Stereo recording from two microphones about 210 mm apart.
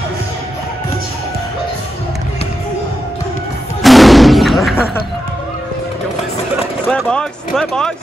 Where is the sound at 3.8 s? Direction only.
Centre (ahead or behind).